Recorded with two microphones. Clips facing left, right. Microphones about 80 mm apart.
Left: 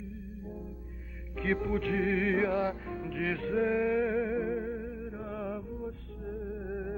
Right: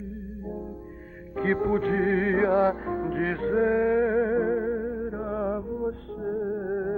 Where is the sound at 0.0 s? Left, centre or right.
Right.